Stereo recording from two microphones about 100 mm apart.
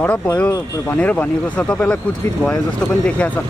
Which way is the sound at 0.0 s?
10° left (ahead or behind).